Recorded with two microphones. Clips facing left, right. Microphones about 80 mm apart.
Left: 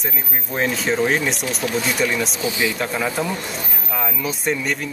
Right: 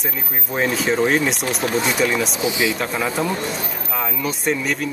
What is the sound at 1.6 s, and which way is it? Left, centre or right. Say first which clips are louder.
Speech: right 2 dB; right.